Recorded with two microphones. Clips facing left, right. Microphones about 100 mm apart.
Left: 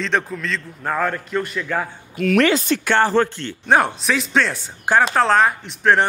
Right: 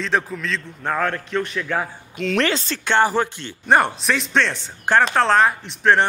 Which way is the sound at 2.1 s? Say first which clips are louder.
Left 4 dB; 25° right (ahead or behind).